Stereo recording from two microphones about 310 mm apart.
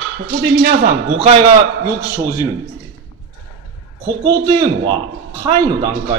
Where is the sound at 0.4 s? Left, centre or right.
Right.